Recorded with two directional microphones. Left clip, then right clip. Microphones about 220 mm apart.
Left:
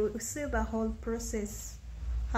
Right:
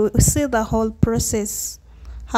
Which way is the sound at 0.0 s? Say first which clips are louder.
Right 14 dB; 45° right (ahead or behind).